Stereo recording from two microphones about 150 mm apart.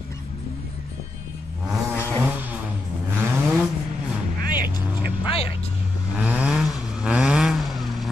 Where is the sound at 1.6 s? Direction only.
Centre (ahead or behind).